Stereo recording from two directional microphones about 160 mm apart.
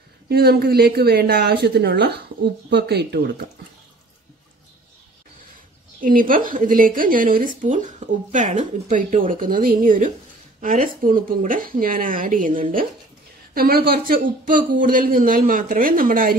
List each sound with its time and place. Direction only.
0.3 s a woman's voice: 75° right (ahead or behind)
5.9 s speech: 60° right (ahead or behind)
13.6 s speech: 70° right (ahead or behind)